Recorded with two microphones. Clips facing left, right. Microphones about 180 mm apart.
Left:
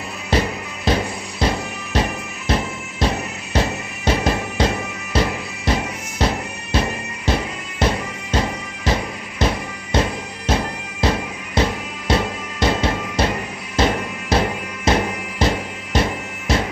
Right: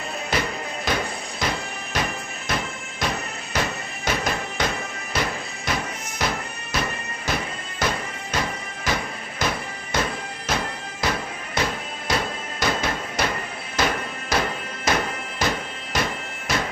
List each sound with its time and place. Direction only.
0.3 s music: 30° left (ahead or behind)